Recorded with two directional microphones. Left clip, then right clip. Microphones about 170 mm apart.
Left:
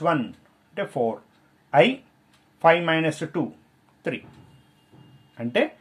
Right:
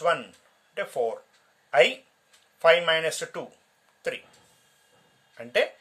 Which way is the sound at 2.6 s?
20° right (ahead or behind).